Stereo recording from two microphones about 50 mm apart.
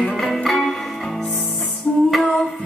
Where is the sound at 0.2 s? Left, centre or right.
Centre.